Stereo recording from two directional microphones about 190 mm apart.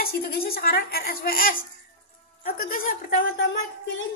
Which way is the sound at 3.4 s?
75° left (ahead or behind).